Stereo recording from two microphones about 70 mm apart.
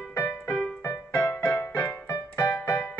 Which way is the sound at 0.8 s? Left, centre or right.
Left.